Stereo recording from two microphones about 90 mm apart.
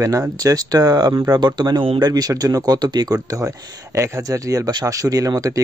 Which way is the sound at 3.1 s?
35° right (ahead or behind).